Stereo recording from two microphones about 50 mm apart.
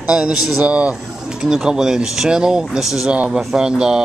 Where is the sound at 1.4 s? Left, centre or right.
Centre.